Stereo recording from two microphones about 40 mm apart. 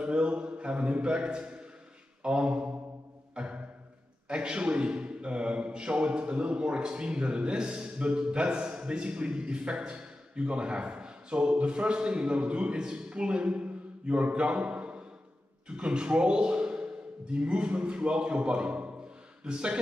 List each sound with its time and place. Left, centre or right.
0.0 s a man's voice: right
3.3 s a sound: right
4.3 s a man's voice: right